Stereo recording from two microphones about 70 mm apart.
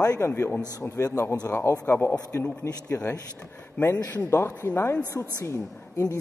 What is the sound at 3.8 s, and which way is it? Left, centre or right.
Speech, left.